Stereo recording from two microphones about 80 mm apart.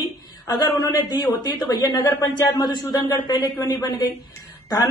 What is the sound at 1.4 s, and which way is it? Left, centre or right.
A woman's voice, left.